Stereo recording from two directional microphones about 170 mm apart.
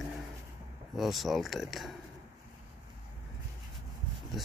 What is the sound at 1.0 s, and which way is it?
Speech, centre (ahead or behind).